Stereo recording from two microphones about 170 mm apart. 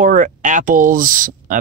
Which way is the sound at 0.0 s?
50° right (ahead or behind).